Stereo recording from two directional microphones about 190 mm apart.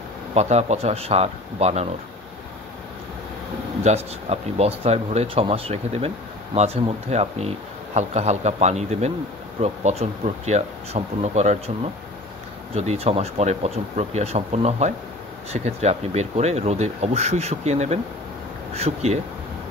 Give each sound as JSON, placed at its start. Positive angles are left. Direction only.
{"t": 0.3, "sound": "speech", "side_deg": -35}
{"t": 3.8, "sound": "speech", "side_deg": -35}
{"t": 12.7, "sound": "speech", "side_deg": -35}